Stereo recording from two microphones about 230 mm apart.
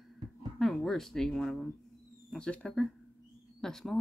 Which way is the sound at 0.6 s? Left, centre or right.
Centre.